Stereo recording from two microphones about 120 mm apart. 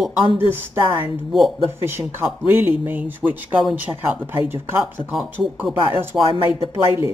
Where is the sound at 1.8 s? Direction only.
20° right (ahead or behind).